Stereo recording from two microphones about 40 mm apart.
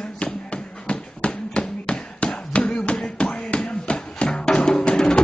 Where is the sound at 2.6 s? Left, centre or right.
Left.